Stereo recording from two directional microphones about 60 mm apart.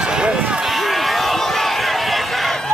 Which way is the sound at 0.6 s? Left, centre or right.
Centre.